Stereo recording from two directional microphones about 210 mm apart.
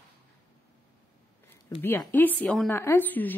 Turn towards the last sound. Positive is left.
turn(degrees=10)  # may be behind; listen again after turning